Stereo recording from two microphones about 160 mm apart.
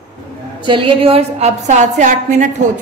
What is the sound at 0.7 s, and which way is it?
A woman's voice, 30° right (ahead or behind).